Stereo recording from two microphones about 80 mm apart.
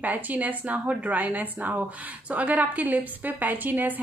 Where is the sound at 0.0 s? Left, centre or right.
Right.